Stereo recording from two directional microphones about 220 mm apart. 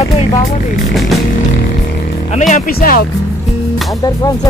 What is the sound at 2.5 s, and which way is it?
Music, 40° left (ahead or behind).